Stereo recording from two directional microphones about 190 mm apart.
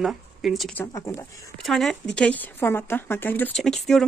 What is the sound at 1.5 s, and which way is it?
Speech, centre (ahead or behind).